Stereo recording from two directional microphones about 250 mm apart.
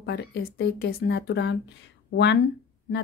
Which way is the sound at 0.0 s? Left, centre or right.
Left.